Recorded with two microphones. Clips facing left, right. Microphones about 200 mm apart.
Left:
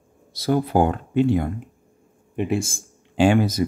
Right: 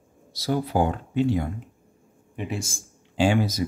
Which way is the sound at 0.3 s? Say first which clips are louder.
Left 5 dB; 55° left (ahead or behind).